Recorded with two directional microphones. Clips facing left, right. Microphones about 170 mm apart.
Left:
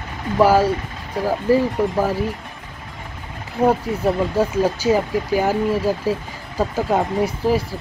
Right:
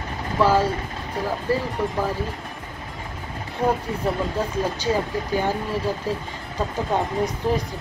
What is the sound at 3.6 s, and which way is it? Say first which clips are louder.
Speech: left 5 dB; 30° left (ahead or behind).